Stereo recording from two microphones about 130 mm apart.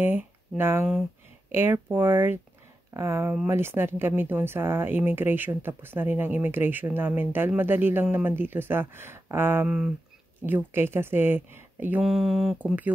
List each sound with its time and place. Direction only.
0.0 s speech: 15° right (ahead or behind)
12.0 s speech: centre (ahead or behind)
12.5 s speech: 10° right (ahead or behind)